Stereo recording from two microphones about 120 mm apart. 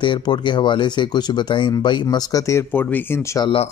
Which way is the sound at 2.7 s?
15° left (ahead or behind).